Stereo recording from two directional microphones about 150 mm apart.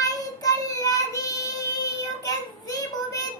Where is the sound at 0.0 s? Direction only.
25° left (ahead or behind).